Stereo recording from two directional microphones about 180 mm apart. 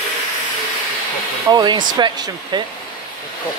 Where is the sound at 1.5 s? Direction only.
25° right (ahead or behind).